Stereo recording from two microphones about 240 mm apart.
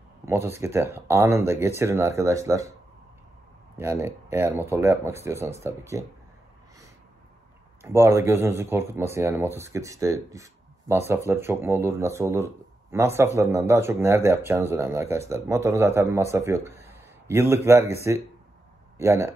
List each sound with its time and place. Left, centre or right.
0.2 s speech: centre
3.7 s speech: centre
7.8 s speech: centre
18.9 s speech: centre